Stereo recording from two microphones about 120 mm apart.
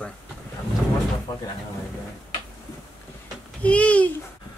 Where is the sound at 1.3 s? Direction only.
30° left (ahead or behind).